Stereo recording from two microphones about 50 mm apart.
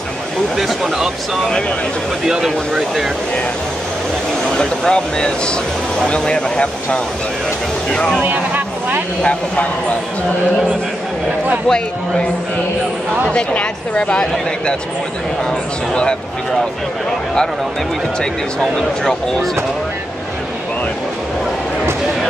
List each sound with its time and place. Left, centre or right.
0.6 s speech: centre
4.5 s speech: centre
8.2 s vehicle: right
9.2 s speech: left
13.3 s speech: left
14.2 s speech: centre
15.9 s speech: centre
18.2 s speech: centre